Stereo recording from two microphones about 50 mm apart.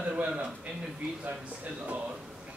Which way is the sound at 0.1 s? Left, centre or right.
Right.